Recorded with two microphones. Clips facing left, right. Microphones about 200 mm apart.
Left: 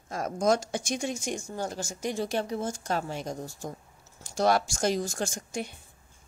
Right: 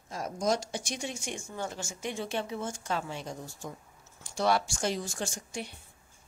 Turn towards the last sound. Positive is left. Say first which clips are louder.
# left 4 dB
turn(degrees=45)  # may be behind; listen again after turning